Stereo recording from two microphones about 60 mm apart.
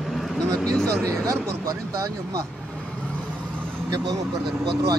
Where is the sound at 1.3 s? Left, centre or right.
Right.